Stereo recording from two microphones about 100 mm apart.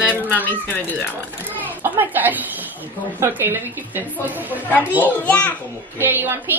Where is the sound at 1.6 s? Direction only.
20° right (ahead or behind).